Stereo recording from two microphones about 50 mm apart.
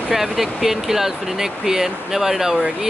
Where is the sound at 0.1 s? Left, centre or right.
Centre.